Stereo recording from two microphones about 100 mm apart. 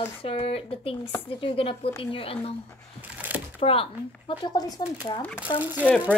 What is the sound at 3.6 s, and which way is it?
Speech, 70° left (ahead or behind).